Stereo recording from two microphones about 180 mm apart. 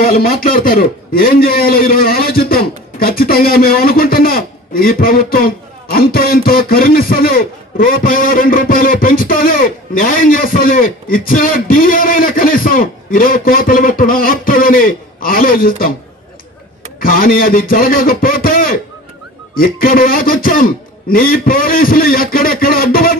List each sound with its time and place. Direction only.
0.0 s a man's voice: 55° left (ahead or behind)
17.0 s a man's voice: 55° left (ahead or behind)